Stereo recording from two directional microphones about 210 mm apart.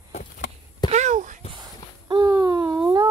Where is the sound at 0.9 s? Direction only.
35° right (ahead or behind).